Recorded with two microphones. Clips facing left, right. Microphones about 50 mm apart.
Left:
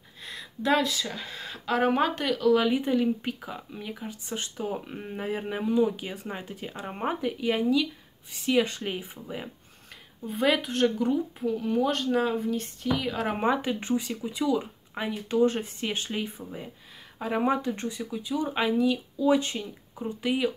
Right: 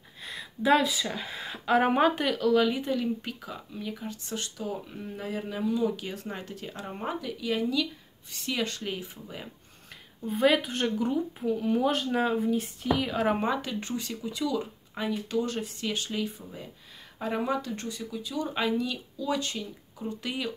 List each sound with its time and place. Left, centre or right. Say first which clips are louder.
0.2 s speech: right 1 dB; centre
2.6 s speech: left 3 dB; centre
7.7 s speech: left 4 dB; centre
10.2 s speech: right 1 dB; centre
13.4 s speech: left 3 dB; left